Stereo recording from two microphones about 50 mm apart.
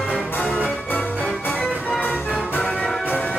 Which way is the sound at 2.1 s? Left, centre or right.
Left.